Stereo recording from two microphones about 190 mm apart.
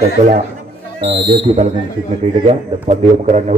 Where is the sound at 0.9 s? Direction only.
30° right (ahead or behind).